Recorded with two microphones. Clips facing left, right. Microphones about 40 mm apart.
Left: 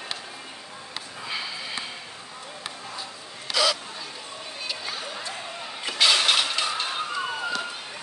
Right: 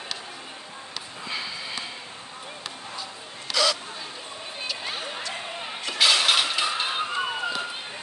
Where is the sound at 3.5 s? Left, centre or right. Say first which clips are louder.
Even; centre.